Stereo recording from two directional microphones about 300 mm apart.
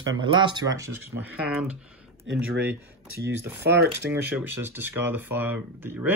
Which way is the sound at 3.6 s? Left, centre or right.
Right.